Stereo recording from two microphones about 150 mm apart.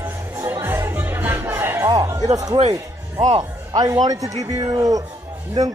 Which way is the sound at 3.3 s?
30° right (ahead or behind).